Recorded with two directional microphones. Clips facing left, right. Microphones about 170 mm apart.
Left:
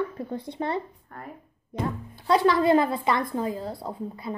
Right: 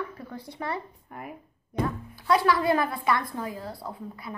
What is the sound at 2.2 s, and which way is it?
A woman's voice, 25° left (ahead or behind).